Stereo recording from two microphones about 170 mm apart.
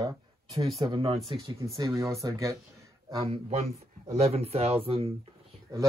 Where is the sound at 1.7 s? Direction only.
20° right (ahead or behind).